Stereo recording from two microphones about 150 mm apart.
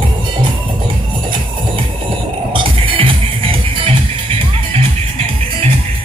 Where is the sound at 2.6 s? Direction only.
35° right (ahead or behind).